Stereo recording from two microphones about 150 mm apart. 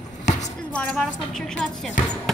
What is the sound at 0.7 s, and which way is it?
Speech, 5° left (ahead or behind).